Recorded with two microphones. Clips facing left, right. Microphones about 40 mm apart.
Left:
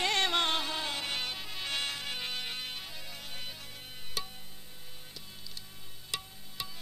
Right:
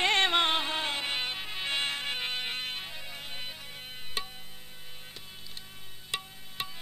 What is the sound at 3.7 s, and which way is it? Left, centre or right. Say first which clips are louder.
Music: right 3 dB; right.